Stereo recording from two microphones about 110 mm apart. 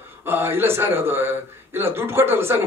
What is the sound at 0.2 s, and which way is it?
A man's voice, 20° right (ahead or behind).